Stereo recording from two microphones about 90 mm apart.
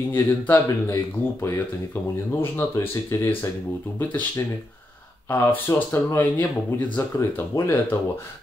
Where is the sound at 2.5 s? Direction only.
30° left (ahead or behind).